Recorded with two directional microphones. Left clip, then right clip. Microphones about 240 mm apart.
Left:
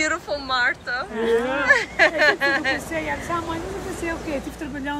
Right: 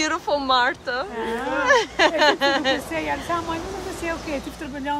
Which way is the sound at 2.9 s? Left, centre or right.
Right.